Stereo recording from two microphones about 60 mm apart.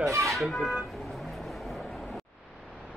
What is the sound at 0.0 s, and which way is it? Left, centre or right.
Speech, right.